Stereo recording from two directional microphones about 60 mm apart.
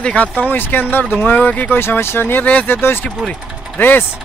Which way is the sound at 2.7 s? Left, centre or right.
Left.